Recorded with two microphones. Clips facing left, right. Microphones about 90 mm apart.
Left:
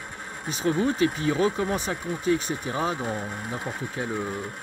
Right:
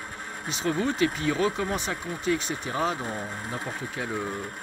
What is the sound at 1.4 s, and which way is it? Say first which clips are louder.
Speech: left 3 dB; 35° left (ahead or behind).